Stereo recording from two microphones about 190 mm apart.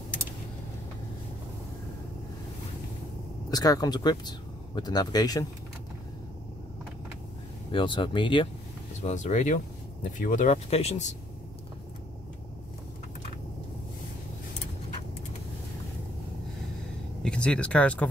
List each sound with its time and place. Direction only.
3.4 s speech: 20° left (ahead or behind)
7.7 s speech: 25° left (ahead or behind)
9.0 s speech: 40° left (ahead or behind)
17.2 s speech: 5° left (ahead or behind)